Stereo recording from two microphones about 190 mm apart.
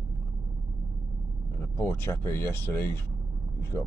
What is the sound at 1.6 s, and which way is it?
Speech, 10° left (ahead or behind).